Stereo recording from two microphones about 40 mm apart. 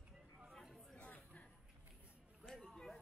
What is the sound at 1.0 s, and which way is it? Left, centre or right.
Chatter, left.